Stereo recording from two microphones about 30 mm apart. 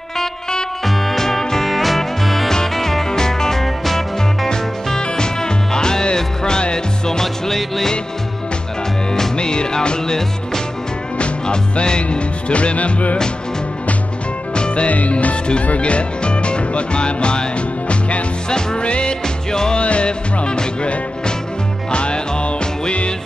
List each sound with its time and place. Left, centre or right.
0.8 s music: centre
1.7 s music: centre
4.5 s music: centre
9.4 s music: left
11.1 s music: left
12.7 s music: left
14.5 s music: left
14.9 s music: left
15.8 s music: left
19.2 s music: left
19.8 s music: left
20.1 s music: left
21.9 s music: left